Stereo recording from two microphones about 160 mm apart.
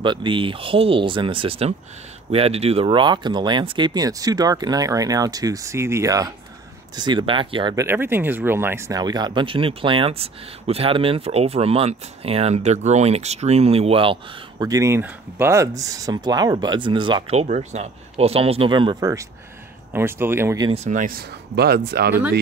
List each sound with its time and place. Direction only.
0.0 s speech: 30° right (ahead or behind)
7.7 s speech: 15° right (ahead or behind)
17.4 s speech: 45° right (ahead or behind); by 20.6 s 15° right (ahead or behind)
20.7 s speech: 45° right (ahead or behind)
21.5 s speech: 80° right